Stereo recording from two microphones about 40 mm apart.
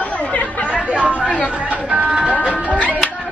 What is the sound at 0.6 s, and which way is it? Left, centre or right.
Chatter, right.